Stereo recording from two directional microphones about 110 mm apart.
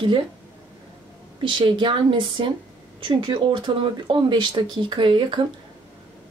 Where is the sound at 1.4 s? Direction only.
50° right (ahead or behind).